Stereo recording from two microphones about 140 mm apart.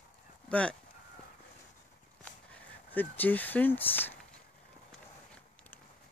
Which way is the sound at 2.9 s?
10° left (ahead or behind).